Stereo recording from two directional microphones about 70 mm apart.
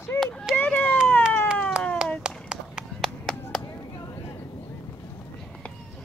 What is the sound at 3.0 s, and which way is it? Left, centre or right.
Clapping, centre.